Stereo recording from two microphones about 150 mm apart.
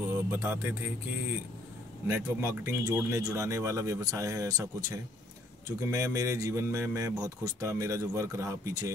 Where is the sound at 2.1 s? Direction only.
20° right (ahead or behind).